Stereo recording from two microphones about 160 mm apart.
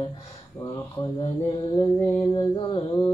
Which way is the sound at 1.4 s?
30° left (ahead or behind).